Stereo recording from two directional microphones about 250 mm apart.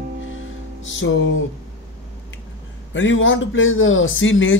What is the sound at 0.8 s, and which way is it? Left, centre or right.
Speech, left.